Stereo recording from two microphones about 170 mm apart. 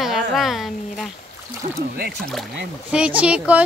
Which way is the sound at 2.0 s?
70° right (ahead or behind).